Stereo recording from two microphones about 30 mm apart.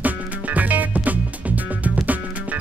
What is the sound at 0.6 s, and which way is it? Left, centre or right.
Music, right.